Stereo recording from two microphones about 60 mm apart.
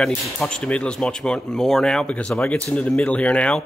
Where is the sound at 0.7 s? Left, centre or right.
Centre.